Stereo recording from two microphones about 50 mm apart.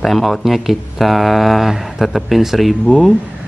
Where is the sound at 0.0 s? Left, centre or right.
Centre.